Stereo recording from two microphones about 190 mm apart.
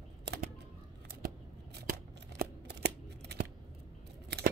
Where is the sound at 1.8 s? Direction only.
55° right (ahead or behind).